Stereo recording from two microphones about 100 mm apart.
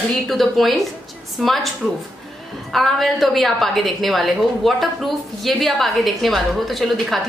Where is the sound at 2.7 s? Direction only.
Centre (ahead or behind).